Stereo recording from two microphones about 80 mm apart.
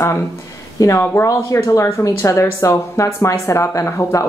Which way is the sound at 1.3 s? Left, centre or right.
Left.